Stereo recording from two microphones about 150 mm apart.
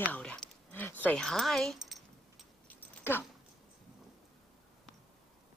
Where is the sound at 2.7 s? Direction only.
15° left (ahead or behind).